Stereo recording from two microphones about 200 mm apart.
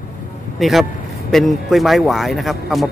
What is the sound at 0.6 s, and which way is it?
Speech, centre (ahead or behind).